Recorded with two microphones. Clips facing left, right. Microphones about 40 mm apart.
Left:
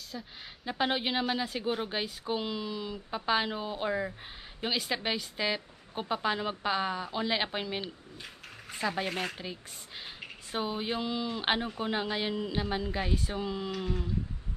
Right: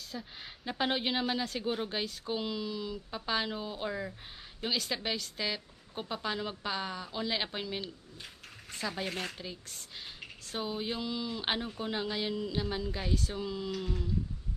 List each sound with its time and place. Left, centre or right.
0.1 s a woman's voice: centre